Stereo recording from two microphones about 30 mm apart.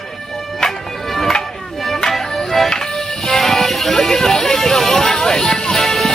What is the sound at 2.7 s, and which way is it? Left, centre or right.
Music, left.